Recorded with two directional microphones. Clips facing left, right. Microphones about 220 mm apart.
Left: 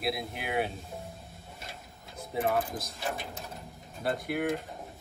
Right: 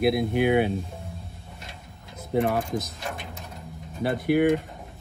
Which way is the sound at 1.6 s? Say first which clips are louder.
Right 2 dB; centre (ahead or behind).